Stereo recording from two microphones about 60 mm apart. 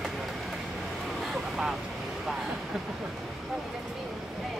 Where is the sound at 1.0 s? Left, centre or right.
Centre.